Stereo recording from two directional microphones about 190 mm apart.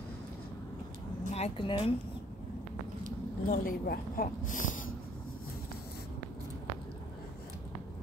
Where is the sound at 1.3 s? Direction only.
30° left (ahead or behind).